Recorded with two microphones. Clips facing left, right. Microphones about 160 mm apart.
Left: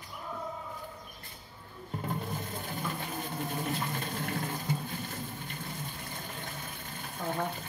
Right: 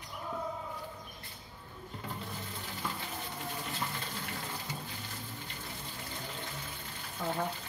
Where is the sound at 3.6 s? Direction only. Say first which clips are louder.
Left 5 dB; 50° left (ahead or behind).